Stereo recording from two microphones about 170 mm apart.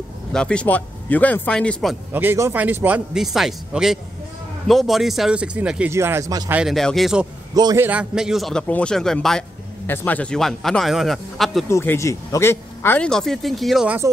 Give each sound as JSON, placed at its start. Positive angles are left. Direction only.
{"t": 0.3, "sound": "speech", "side_deg": 5}
{"t": 2.1, "sound": "speech", "side_deg": -15}
{"t": 6.5, "sound": "a man's voice", "side_deg": 0}
{"t": 7.5, "sound": "a man's voice", "side_deg": -25}
{"t": 7.8, "sound": "a man's voice", "side_deg": -10}
{"t": 11.6, "sound": "speech", "side_deg": 15}